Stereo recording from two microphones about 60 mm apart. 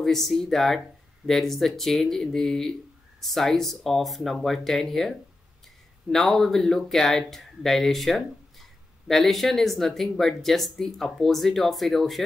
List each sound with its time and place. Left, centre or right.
0.0 s speech: centre